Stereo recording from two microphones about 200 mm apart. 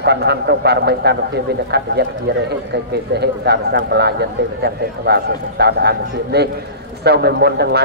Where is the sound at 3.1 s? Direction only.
55° right (ahead or behind).